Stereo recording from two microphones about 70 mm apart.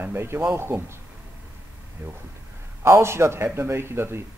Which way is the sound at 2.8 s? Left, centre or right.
Right.